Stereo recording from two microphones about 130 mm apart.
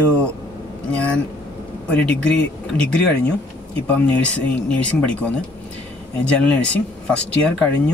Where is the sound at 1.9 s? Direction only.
10° left (ahead or behind).